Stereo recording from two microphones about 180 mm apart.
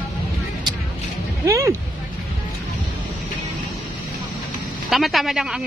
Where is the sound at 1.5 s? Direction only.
15° right (ahead or behind).